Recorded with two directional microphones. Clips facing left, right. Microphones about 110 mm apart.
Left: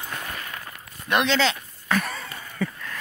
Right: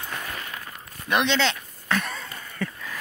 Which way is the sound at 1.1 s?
Centre (ahead or behind).